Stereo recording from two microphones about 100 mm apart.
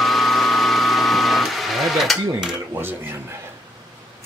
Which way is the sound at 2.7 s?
25° right (ahead or behind).